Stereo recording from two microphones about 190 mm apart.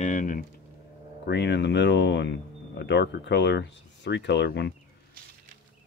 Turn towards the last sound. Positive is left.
turn(degrees=65)  # may be behind; listen again after turning